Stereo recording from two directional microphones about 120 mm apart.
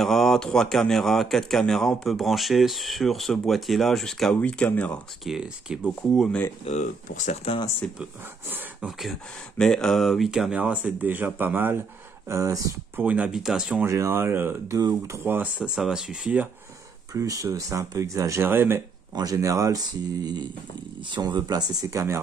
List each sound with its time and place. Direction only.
0.0 s speech: centre (ahead or behind)
5.2 s speech: 5° right (ahead or behind)
6.6 s speech: 80° left
8.8 s speech: 10° right (ahead or behind)
9.6 s speech: 5° left (ahead or behind); by 11.8 s 15° right (ahead or behind)
12.3 s speech: 25° right (ahead or behind)
12.9 s speech: 10° right (ahead or behind)
13.8 s speech: 25° right (ahead or behind)
14.7 s speech: 30° right (ahead or behind)
15.7 s speech: 5° right (ahead or behind)
17.1 s speech: 30° right (ahead or behind)
19.1 s speech: 30° right (ahead or behind)